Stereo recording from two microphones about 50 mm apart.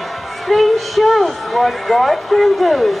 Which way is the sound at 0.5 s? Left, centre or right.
Centre.